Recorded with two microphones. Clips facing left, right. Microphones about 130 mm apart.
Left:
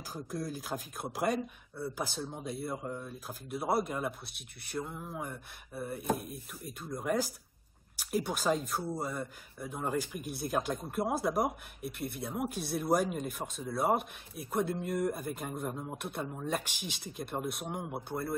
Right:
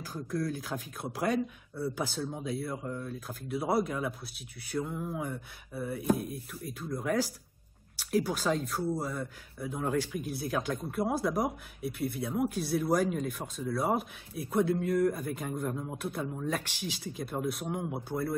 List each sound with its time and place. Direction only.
0.0 s speech: 10° left (ahead or behind)